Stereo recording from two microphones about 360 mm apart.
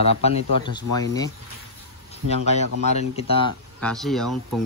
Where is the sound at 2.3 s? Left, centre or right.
Centre.